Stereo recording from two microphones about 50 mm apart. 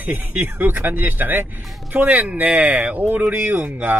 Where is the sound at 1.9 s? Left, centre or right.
Right.